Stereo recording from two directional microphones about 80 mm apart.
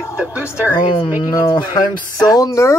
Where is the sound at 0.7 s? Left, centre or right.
Left.